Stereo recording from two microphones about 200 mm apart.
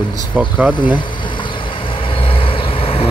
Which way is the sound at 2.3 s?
25° left (ahead or behind).